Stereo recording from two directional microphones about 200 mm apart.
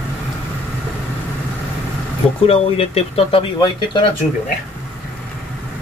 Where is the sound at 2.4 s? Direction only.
30° left (ahead or behind).